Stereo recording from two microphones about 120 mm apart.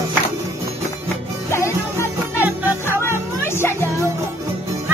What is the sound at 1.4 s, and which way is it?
Music, 20° left (ahead or behind).